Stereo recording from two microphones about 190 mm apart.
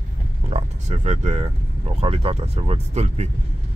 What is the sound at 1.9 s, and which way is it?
Speech, 30° right (ahead or behind).